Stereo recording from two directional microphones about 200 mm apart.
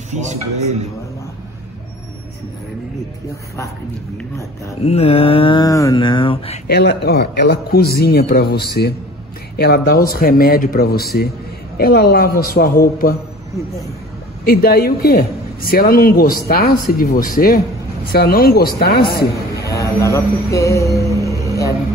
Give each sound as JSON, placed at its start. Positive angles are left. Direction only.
{"t": 0.1, "sound": "a man's voice", "side_deg": -35}
{"t": 4.8, "sound": "speech", "side_deg": 30}
{"t": 6.7, "sound": "a man's voice", "side_deg": 55}
{"t": 14.4, "sound": "a man's voice", "side_deg": 50}
{"t": 19.8, "sound": "speech", "side_deg": 15}